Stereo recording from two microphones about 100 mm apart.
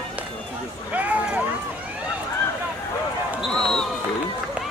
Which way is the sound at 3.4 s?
5° left (ahead or behind).